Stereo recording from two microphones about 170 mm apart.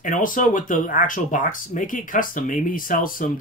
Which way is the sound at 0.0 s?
50° left (ahead or behind).